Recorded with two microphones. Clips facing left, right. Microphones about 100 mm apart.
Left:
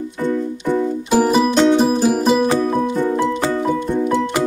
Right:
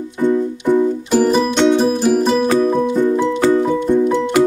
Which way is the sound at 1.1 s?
5° left (ahead or behind).